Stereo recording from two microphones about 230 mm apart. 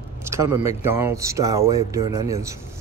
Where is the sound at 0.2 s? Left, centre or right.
Centre.